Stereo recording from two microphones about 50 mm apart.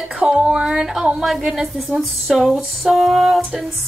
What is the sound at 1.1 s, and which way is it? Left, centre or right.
Speech, centre.